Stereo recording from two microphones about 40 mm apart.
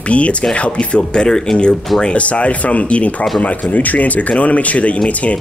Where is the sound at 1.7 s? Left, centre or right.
Centre.